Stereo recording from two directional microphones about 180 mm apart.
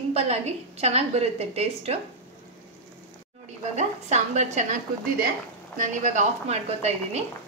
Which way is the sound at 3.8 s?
40° right (ahead or behind).